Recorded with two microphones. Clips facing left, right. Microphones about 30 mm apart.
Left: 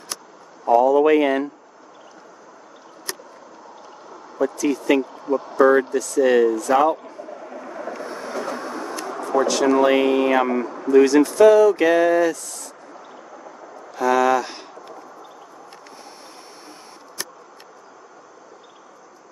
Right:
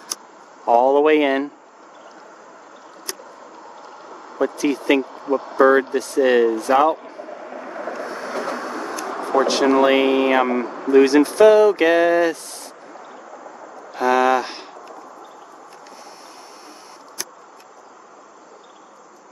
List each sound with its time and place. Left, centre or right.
0.7 s speech: right
4.4 s vehicle: right
8.9 s a sound: right
9.5 s speech: right